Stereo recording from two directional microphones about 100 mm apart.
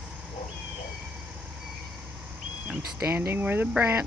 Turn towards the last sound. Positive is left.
turn(degrees=-20)  # may be behind; listen again after turning